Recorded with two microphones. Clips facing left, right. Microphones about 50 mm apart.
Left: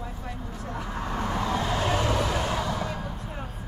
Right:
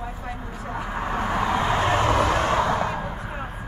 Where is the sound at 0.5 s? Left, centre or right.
Right.